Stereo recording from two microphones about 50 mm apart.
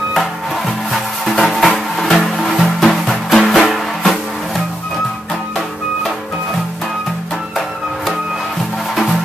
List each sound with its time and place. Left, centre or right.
1.2 s music: centre